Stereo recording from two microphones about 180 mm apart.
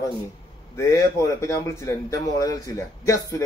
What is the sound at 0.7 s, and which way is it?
A man's voice, 15° left (ahead or behind).